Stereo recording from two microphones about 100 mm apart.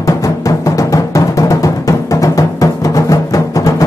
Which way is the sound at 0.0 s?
35° left (ahead or behind).